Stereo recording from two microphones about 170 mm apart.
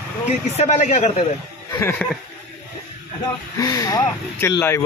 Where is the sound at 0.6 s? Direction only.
40° left (ahead or behind).